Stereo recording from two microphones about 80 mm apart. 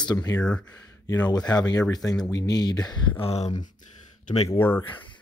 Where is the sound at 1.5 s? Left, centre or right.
Left.